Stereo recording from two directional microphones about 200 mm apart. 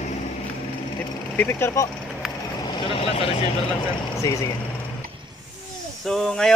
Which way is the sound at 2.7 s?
25° left (ahead or behind).